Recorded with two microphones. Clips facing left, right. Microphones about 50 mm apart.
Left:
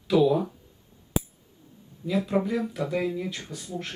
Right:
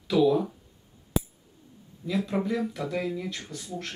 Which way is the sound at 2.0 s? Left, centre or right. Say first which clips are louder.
Left 2 dB; centre.